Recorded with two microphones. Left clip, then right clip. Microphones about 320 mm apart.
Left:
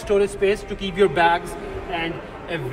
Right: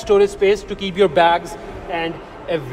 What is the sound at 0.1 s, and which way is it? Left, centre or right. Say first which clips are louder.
Speech: right 5 dB; right.